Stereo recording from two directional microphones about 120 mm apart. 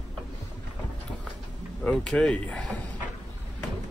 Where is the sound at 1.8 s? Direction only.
10° left (ahead or behind).